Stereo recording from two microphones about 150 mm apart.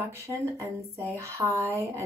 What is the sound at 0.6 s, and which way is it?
Speech, 20° right (ahead or behind).